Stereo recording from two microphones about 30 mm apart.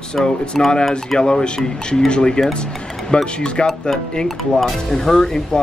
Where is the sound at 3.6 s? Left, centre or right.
Centre.